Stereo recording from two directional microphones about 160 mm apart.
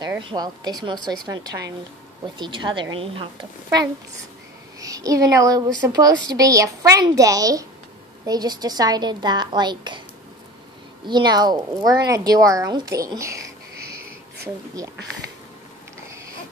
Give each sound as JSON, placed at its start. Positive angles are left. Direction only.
{"t": 0.2, "sound": "speech", "side_deg": -30}
{"t": 4.7, "sound": "speech", "side_deg": -20}
{"t": 11.1, "sound": "speech", "side_deg": -25}
{"t": 14.8, "sound": "speech", "side_deg": -20}